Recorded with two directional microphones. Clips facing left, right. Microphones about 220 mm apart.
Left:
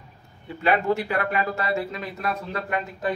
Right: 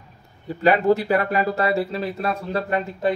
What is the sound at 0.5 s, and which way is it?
Speech, 40° right (ahead or behind).